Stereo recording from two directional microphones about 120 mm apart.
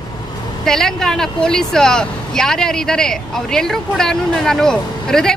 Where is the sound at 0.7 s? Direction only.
5° left (ahead or behind).